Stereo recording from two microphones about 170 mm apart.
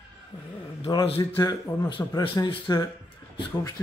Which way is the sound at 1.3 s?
20° left (ahead or behind).